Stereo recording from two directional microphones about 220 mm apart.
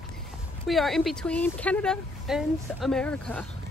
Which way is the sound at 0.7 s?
Centre (ahead or behind).